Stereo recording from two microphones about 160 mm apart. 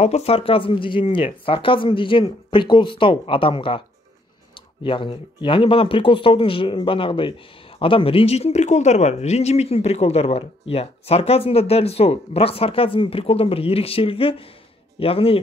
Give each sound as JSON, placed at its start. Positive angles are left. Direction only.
{"t": 0.0, "sound": "speech", "side_deg": 40}